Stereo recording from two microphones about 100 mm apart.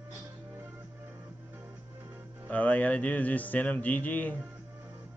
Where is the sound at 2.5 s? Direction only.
15° left (ahead or behind).